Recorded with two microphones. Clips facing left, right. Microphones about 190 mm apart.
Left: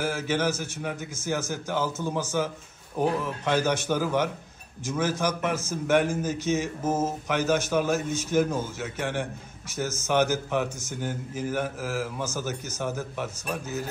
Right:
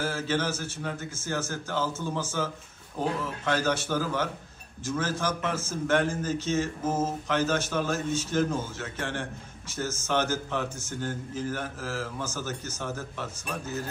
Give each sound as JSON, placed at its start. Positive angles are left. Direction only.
{"t": 0.0, "sound": "mantra", "side_deg": 15}